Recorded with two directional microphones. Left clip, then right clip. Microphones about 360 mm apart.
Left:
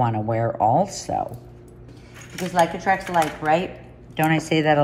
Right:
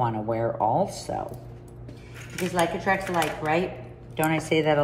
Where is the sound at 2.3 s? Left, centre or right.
Centre.